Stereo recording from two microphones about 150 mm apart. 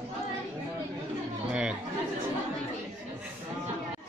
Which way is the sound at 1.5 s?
5° right (ahead or behind).